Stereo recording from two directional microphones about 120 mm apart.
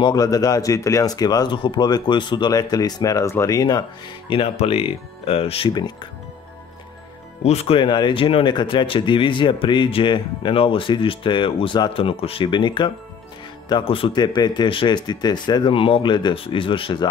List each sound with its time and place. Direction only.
0.0 s speech: 30° left (ahead or behind)
4.6 s speech: 55° left (ahead or behind)
7.4 s speech: 55° left (ahead or behind)